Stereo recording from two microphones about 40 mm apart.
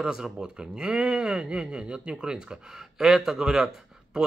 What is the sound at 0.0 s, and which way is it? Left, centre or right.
Speech, centre.